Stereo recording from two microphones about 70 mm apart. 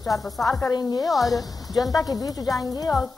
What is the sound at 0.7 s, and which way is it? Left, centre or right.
Speech, left.